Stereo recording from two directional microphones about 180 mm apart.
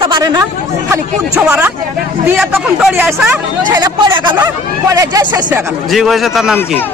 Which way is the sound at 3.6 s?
20° right (ahead or behind).